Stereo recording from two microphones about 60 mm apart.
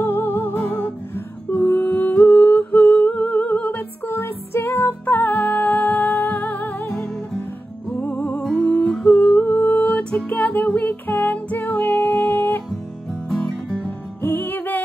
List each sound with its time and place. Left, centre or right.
0.0 s music: left
1.7 s humming: left
2.7 s music: left
8.0 s music: left
9.2 s music: left
13.3 s music: centre
13.8 s music: left